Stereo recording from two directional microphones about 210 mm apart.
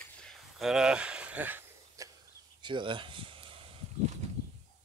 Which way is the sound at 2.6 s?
20° right (ahead or behind).